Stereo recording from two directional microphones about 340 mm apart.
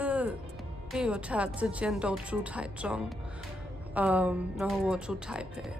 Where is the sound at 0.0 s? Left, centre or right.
Centre.